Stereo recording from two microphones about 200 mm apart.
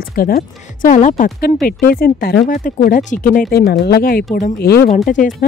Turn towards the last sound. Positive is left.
turn(degrees=40)  # may be behind; listen again after turning